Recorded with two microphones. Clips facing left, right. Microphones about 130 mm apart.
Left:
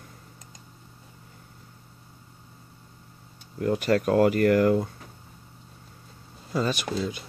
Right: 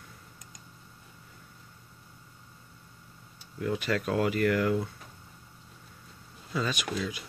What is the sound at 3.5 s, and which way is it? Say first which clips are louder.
Speech: left 6 dB; 45° left (ahead or behind).